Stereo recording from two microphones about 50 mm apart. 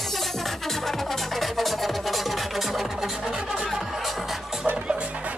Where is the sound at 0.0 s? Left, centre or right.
Centre.